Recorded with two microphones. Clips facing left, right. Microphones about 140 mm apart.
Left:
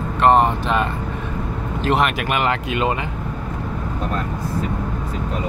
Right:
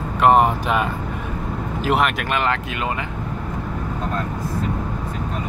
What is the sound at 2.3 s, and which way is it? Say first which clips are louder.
Speech: left 2 dB; 20° left (ahead or behind).